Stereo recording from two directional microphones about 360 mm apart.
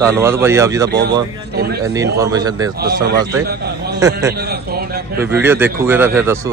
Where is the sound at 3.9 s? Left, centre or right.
Centre.